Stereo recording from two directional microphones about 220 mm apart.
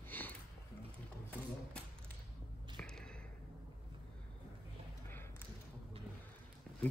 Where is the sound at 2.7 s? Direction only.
5° left (ahead or behind).